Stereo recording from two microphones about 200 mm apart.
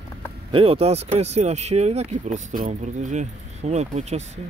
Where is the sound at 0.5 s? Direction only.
30° right (ahead or behind).